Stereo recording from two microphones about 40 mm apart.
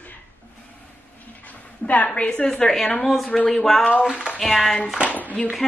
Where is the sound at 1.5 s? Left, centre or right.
Left.